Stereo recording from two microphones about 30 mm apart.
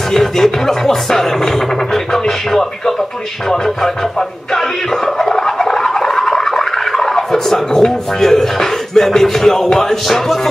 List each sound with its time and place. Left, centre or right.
0.1 s music: centre
4.6 s toothbrush: centre